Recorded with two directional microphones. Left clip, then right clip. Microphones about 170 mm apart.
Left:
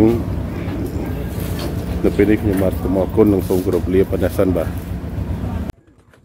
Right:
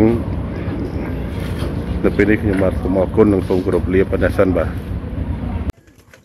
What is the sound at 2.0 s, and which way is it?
Speech, 15° left (ahead or behind).